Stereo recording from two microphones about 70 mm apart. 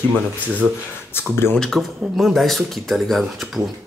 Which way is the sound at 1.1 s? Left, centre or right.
Left.